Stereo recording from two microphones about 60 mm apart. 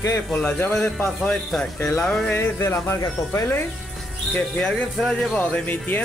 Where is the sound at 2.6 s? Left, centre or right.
Left.